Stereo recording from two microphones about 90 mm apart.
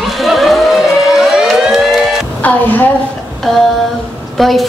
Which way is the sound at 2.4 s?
20° left (ahead or behind).